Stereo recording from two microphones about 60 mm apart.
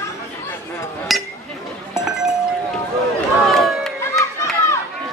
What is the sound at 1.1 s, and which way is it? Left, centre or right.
Chink, centre.